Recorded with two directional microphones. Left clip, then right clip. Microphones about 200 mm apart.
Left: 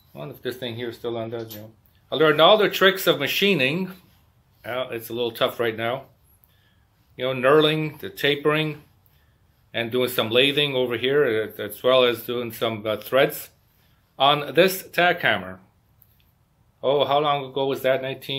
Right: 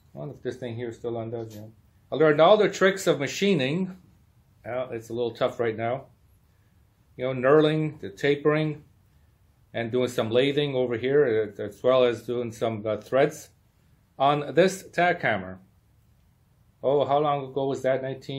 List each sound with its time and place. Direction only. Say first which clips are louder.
0.4 s speech: left 3 dB; 20° right (ahead or behind)
7.2 s speech: left 2 dB; 20° right (ahead or behind)
16.8 s speech: left 2 dB; 20° right (ahead or behind)